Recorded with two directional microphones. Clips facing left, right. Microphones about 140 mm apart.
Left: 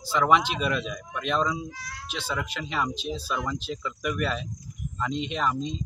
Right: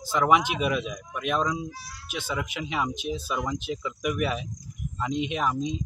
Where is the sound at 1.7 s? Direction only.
90° left.